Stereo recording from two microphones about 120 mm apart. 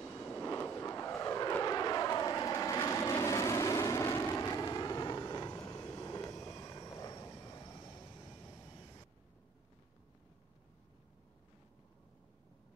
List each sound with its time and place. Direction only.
0.2 s a sound: 15° left (ahead or behind)
1.2 s vehicle: 25° left (ahead or behind)
5.9 s vehicle: 5° left (ahead or behind)
6.3 s vehicle: 30° left (ahead or behind)